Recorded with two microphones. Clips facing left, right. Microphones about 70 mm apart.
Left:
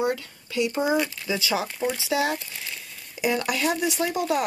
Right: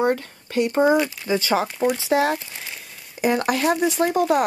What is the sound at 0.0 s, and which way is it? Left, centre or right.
Speech, right.